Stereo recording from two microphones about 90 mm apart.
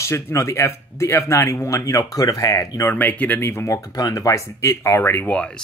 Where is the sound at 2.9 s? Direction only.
20° left (ahead or behind).